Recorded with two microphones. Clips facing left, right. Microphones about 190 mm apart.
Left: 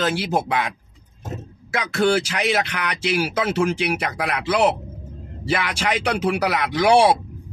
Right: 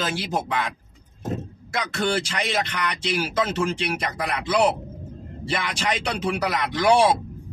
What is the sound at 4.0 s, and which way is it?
Speech, 75° left (ahead or behind).